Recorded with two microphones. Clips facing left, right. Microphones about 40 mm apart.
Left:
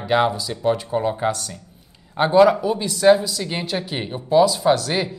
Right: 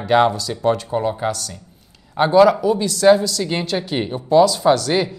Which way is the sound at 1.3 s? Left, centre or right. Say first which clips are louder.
Even; left.